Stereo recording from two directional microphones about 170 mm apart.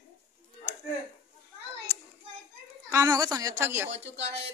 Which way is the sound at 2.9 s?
20° right (ahead or behind).